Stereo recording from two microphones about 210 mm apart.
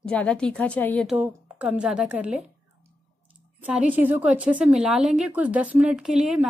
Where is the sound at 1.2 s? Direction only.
5° right (ahead or behind).